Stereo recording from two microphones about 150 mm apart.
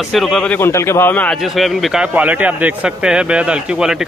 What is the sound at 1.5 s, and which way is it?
Speech, centre (ahead or behind).